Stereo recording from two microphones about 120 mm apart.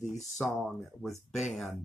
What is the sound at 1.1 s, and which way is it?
Speech, 70° left (ahead or behind).